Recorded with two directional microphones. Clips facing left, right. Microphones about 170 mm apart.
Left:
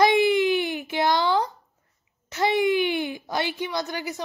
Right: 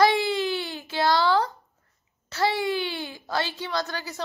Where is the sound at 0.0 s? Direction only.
20° left (ahead or behind).